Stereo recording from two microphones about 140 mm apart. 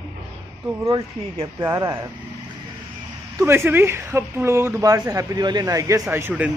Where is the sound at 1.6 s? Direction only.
20° right (ahead or behind).